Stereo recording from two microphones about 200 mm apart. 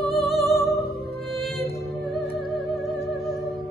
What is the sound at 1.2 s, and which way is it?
Music, centre (ahead or behind).